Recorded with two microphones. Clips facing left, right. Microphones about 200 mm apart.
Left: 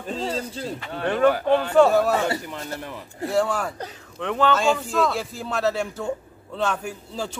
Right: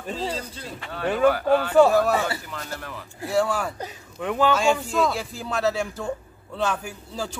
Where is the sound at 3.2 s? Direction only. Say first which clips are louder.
Left 1 dB; centre (ahead or behind).